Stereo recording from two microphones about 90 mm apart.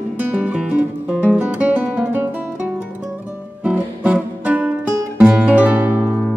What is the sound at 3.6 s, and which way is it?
Music, 15° right (ahead or behind).